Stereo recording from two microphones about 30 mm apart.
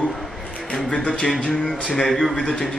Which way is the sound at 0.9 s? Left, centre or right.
Left.